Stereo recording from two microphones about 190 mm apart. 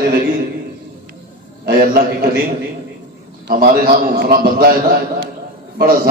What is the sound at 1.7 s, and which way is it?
Speech, 50° right (ahead or behind).